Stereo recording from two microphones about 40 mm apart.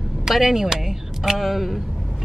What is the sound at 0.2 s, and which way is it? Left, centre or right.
Speech, centre.